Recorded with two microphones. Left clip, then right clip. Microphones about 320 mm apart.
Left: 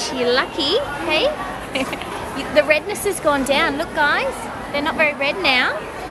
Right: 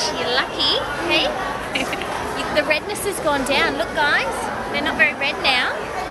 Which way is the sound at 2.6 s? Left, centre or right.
Left.